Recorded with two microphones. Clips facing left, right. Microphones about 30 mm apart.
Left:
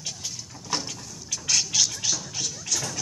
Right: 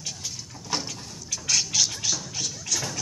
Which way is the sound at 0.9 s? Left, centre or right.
Right.